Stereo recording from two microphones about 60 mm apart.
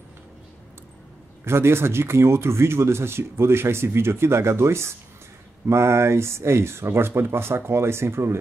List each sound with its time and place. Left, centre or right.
1.4 s speech: right